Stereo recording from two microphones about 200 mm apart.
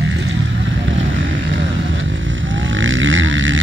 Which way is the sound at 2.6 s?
70° right (ahead or behind).